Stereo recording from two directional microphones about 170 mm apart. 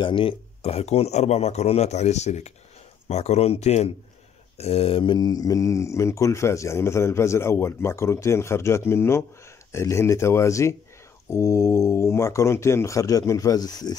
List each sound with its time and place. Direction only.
0.0 s speech: 30° left (ahead or behind)